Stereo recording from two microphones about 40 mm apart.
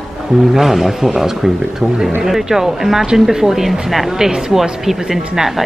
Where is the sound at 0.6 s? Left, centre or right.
Centre.